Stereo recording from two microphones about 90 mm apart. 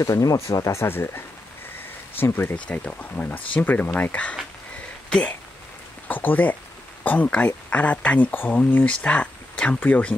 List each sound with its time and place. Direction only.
0.0 s speech: 40° left (ahead or behind); by 4.4 s 15° left (ahead or behind)
6.0 s speech: 20° left (ahead or behind)